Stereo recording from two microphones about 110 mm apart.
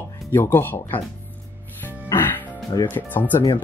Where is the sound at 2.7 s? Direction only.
30° left (ahead or behind).